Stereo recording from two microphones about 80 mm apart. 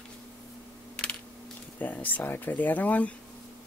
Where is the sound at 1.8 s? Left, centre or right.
Left.